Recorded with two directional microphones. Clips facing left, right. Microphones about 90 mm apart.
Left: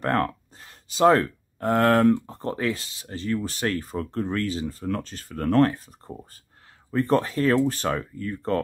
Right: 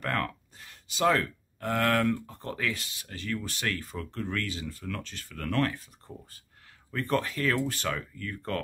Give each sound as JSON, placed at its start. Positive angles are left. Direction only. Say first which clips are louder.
{"t": 0.0, "sound": "speech", "louder": "left 7 dB", "side_deg": 30}